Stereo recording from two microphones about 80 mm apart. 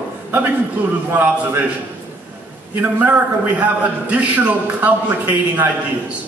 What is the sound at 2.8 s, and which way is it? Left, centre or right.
A man's voice, right.